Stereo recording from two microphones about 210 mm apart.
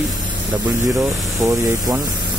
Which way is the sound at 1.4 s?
15° right (ahead or behind).